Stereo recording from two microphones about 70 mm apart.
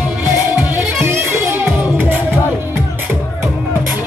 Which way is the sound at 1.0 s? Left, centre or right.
Right.